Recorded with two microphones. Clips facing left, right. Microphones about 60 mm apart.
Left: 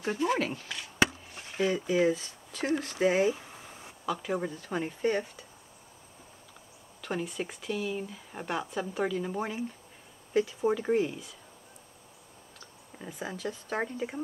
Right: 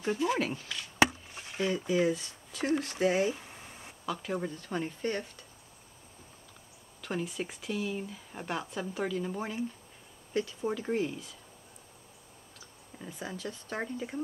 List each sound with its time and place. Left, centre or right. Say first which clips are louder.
0.0 s speech: left 1 dB; centre
7.0 s speech: left 1 dB; centre
12.9 s a sound: left 1 dB; centre
13.4 s speech: left 5 dB; centre